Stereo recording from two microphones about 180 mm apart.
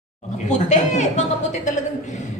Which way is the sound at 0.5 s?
40° left (ahead or behind).